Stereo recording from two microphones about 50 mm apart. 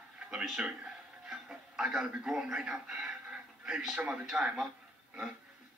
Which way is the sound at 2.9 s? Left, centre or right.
Centre.